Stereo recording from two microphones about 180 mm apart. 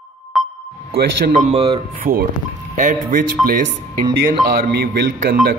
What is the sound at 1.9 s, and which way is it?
Speech, 50° right (ahead or behind).